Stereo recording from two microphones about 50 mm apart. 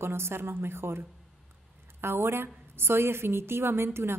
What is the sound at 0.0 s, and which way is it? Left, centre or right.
A woman's voice, right.